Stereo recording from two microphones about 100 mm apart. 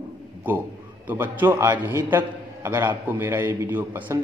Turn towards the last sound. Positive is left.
turn(degrees=-20)  # may be behind; listen again after turning